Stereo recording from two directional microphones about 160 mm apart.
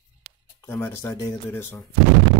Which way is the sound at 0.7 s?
15° left (ahead or behind).